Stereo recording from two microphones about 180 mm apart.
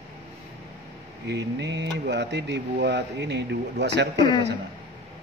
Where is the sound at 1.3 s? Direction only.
70° right (ahead or behind).